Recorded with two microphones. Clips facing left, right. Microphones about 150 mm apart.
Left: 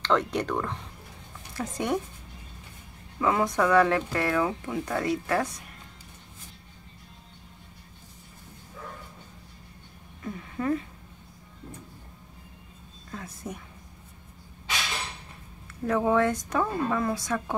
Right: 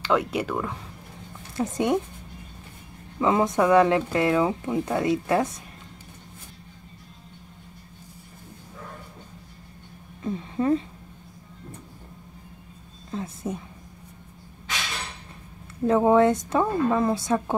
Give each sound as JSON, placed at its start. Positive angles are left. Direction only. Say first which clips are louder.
{"t": 0.0, "sound": "speech", "louder": "right 2 dB", "side_deg": -10}
{"t": 1.6, "sound": "speech", "louder": "right 5 dB", "side_deg": -20}
{"t": 3.2, "sound": "speech", "louder": "right 3 dB", "side_deg": -20}
{"t": 10.2, "sound": "speech", "louder": "right 5 dB", "side_deg": -25}
{"t": 13.1, "sound": "speech", "louder": "right 7 dB", "side_deg": -25}
{"t": 15.8, "sound": "speech", "louder": "right 5 dB", "side_deg": -25}